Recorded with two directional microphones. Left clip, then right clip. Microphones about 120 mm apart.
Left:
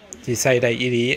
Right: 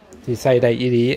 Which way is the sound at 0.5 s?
40° right (ahead or behind).